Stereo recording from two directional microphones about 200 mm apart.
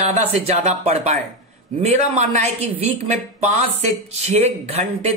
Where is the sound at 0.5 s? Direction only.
35° right (ahead or behind).